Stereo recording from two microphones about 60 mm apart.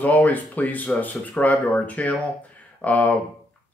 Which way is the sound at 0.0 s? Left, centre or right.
Left.